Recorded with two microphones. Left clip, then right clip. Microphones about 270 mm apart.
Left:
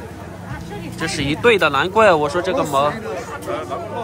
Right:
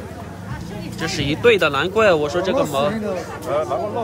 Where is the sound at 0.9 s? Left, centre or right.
Centre.